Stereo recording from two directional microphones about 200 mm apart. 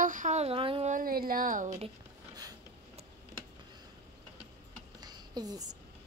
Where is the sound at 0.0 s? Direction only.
40° right (ahead or behind).